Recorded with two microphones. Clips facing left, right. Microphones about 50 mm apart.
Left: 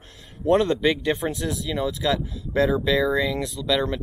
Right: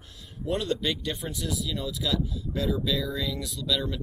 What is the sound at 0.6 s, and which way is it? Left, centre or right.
Speech, left.